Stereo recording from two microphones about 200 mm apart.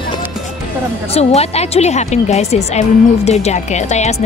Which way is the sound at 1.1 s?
30° left (ahead or behind).